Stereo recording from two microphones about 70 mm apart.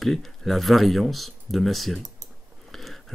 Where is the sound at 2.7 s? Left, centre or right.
Centre.